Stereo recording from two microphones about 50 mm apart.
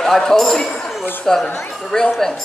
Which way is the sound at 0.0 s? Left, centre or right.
Centre.